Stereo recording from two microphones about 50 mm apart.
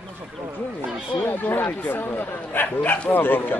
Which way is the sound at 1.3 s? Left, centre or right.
Left.